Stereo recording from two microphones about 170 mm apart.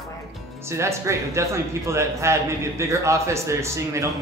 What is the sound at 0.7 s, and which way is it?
Speech, 15° right (ahead or behind).